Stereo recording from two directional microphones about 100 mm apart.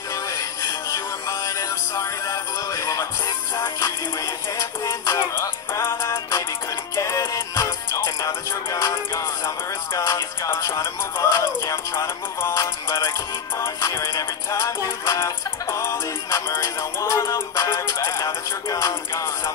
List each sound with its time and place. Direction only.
0.1 s music: 35° left (ahead or behind)